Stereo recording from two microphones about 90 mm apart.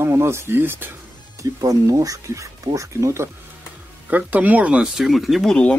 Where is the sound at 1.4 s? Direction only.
40° right (ahead or behind).